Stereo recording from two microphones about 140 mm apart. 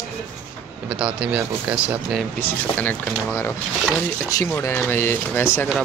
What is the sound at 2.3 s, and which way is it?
Speech, 15° left (ahead or behind).